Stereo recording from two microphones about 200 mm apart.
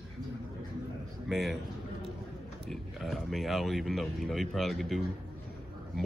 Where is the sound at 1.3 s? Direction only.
Centre (ahead or behind).